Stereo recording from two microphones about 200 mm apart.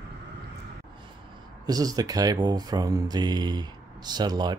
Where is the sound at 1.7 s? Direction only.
20° right (ahead or behind).